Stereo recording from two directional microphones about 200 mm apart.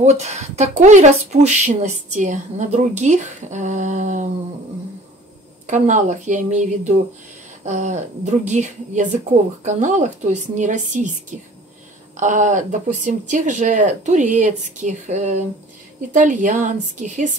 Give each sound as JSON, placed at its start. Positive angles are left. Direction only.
{"t": 0.0, "sound": "a woman's voice", "side_deg": -35}
{"t": 5.7, "sound": "a woman's voice", "side_deg": -40}